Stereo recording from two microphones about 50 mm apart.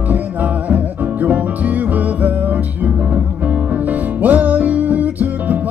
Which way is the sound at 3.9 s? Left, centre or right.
Right.